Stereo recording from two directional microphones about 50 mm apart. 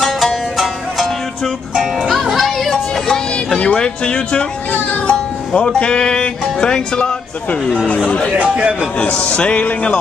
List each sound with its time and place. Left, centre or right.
0.0 s music: centre
3.5 s speech: left
5.0 s music: centre
7.8 s speech: left
8.4 s a man's voice: right
8.9 s speech: left